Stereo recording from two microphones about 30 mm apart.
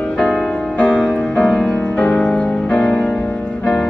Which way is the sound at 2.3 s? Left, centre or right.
Left.